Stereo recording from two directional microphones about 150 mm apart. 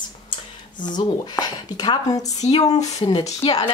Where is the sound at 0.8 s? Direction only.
30° left (ahead or behind).